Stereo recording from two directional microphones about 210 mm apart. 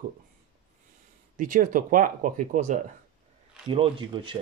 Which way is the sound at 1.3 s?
40° right (ahead or behind).